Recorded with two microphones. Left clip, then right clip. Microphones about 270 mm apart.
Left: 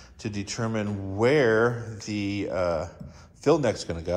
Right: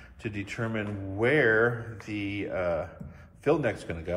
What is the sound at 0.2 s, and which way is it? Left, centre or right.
Mantra, centre.